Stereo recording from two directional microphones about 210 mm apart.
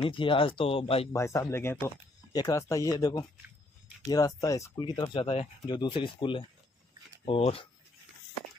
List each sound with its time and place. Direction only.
0.0 s speech: 25° left (ahead or behind)
1.1 s speech: 15° left (ahead or behind)